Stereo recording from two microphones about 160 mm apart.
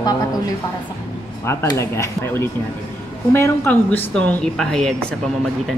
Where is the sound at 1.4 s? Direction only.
15° left (ahead or behind).